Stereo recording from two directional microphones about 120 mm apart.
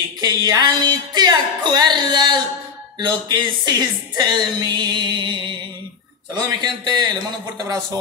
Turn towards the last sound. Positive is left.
turn(degrees=-30)  # may be behind; listen again after turning